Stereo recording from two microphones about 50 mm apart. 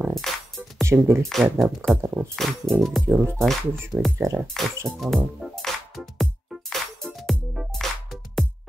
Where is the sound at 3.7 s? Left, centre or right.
Right.